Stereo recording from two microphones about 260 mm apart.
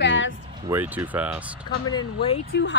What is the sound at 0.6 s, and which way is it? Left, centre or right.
Speech, centre.